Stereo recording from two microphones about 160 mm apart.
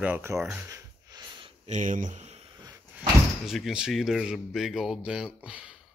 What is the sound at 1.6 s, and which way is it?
Speech, 50° right (ahead or behind).